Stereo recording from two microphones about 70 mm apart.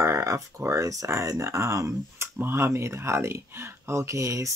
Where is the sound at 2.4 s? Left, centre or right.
Right.